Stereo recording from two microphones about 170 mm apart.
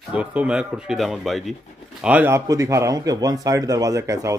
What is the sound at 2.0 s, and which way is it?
Speech, 10° right (ahead or behind).